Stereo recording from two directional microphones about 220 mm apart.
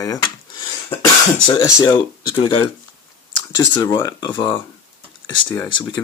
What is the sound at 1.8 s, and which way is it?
Speech, 15° left (ahead or behind).